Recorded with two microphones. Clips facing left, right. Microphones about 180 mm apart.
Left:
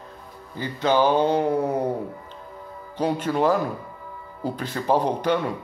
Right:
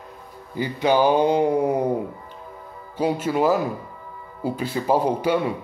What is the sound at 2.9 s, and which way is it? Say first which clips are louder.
Speech: right 2 dB; 10° right (ahead or behind).